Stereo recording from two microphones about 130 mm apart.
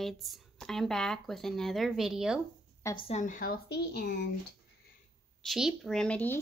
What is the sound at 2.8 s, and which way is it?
Speech, 25° left (ahead or behind).